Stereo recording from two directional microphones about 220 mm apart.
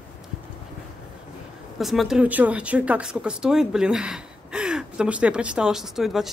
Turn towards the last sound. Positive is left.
turn(degrees=0)  # may be behind; listen again after turning